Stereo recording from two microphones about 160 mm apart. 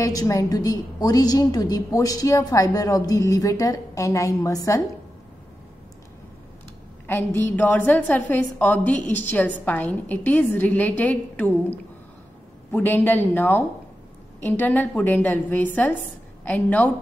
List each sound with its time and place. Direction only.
0.0 s a woman's voice: 20° left (ahead or behind)
7.1 s a woman's voice: 10° left (ahead or behind)